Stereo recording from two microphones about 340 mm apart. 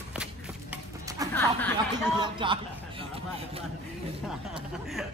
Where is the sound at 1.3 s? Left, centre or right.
Centre.